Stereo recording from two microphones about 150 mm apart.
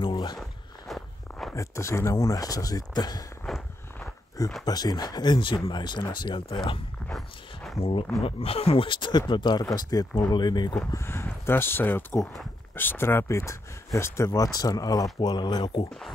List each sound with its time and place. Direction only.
0.0 s walk: 30° left (ahead or behind)
0.4 s walk: centre (ahead or behind)
1.5 s speech: 20° left (ahead or behind)
3.4 s walk: centre (ahead or behind)
4.6 s speech: 25° left (ahead or behind)
7.1 s dog: centre (ahead or behind)
7.8 s speech: 35° left (ahead or behind)
10.9 s speech: 15° left (ahead or behind)